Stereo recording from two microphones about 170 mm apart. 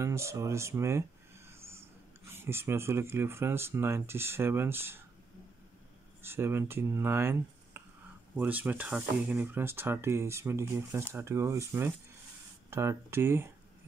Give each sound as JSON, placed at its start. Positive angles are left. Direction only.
{"t": 0.0, "sound": "speech", "side_deg": -15}
{"t": 6.2, "sound": "speech", "side_deg": -15}